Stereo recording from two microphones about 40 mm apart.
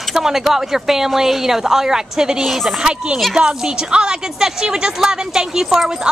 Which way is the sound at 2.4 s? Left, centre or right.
Centre.